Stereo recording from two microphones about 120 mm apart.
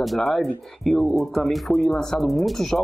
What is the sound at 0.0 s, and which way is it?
Speech, centre (ahead or behind).